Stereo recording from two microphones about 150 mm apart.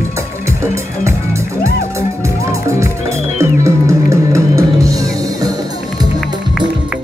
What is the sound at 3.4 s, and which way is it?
Music, 20° right (ahead or behind).